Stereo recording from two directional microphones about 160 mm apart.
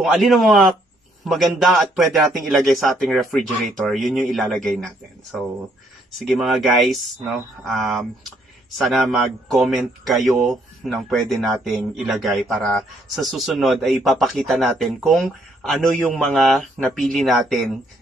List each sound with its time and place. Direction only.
0.0 s speech: centre (ahead or behind)